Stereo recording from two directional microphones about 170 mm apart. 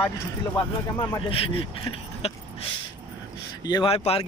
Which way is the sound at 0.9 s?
30° left (ahead or behind).